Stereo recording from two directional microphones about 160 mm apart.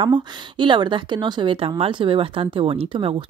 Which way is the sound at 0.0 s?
30° right (ahead or behind).